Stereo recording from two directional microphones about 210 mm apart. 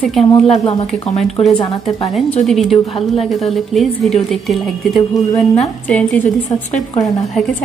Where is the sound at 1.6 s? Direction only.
25° left (ahead or behind).